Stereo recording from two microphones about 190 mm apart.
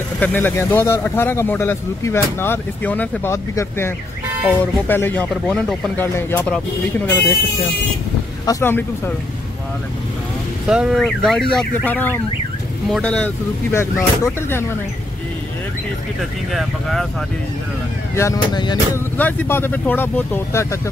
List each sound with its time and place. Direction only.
0.2 s speech: 10° left (ahead or behind)
5.3 s fowl: centre (ahead or behind)
6.1 s speech: 10° left (ahead or behind)
8.5 s speech: 15° left (ahead or behind)
10.7 s fowl: 5° right (ahead or behind)
12.9 s speech: 5° left (ahead or behind)
16.2 s fowl: centre (ahead or behind)
18.1 s speech: 15° left (ahead or behind)
19.1 s speech: 10° left (ahead or behind)